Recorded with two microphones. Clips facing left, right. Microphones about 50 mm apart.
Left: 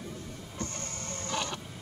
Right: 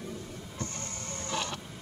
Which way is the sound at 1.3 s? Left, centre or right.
Centre.